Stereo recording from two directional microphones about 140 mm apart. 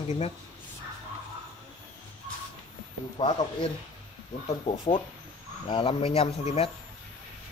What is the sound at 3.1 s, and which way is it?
Speech, 35° left (ahead or behind).